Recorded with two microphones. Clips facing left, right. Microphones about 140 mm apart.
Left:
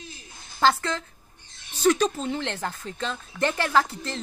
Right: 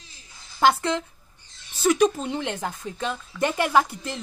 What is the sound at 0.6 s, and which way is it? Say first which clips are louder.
A woman's voice: right 2 dB; 15° right (ahead or behind).